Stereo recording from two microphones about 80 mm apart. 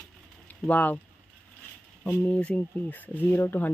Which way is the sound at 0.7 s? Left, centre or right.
Centre.